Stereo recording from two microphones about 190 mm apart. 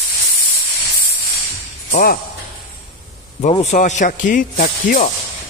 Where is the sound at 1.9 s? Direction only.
45° left (ahead or behind).